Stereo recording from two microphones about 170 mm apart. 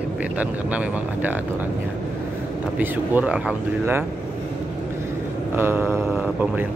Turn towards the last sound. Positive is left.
turn(degrees=-10)  # may be behind; listen again after turning